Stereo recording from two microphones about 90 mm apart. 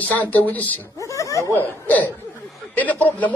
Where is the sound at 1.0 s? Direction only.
35° left (ahead or behind).